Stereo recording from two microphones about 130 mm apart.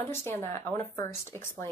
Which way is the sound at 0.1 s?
20° left (ahead or behind).